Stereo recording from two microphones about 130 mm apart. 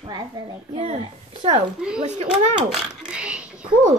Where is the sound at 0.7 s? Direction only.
55° right (ahead or behind).